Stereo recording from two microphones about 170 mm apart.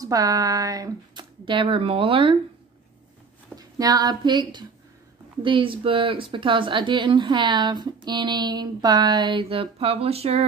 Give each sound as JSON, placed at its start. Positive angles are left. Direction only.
{"t": 0.0, "sound": "speech", "side_deg": -20}
{"t": 3.5, "sound": "speech", "side_deg": -20}